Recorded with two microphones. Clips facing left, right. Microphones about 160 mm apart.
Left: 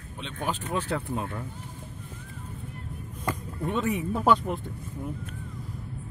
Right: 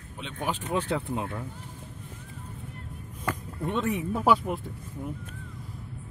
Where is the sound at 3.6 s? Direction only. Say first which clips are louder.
Left 1 dB; centre (ahead or behind).